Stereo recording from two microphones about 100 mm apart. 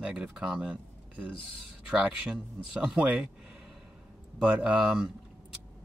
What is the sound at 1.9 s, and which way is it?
Speech, 15° right (ahead or behind).